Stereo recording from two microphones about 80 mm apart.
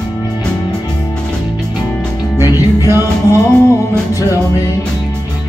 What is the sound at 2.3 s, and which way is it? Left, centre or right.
Music, right.